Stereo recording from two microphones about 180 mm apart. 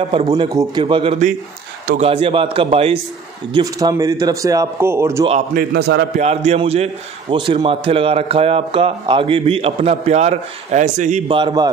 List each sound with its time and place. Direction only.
0.1 s a man's voice: 30° right (ahead or behind)
3.5 s speech: 20° right (ahead or behind)
5.5 s a man's voice: 60° right (ahead or behind)
6.1 s a man's voice: 35° right (ahead or behind)
11.2 s a man's voice: 25° right (ahead or behind)